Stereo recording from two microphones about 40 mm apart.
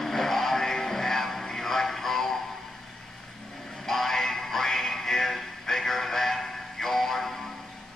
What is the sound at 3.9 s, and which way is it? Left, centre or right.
Music, centre.